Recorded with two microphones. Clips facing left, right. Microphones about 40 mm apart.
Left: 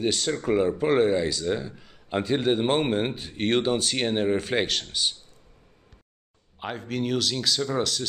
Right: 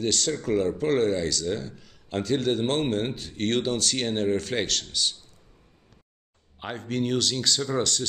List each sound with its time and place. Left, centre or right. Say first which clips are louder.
0.0 s speech: left 1 dB; centre
6.6 s speech: right 1 dB; centre